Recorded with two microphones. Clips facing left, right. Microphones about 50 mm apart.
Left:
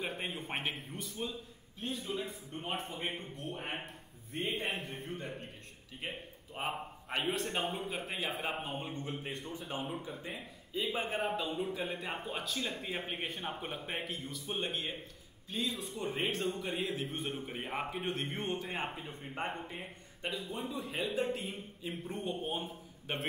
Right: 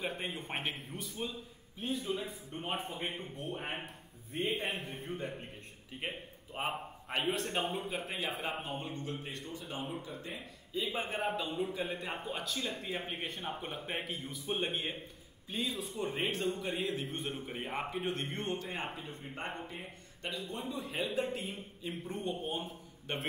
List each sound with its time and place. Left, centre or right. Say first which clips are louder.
0.0 s a man's voice: even; centre
10.0 s speech: left 1 dB; centre
10.3 s a man's voice: even; centre
14.3 s a man's voice: right 3 dB; centre